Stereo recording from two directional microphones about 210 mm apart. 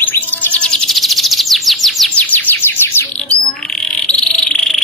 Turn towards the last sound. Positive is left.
turn(degrees=5)  # may be behind; listen again after turning